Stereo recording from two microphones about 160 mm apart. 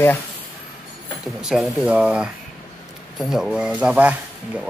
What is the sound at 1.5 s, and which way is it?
A man's voice, 5° right (ahead or behind).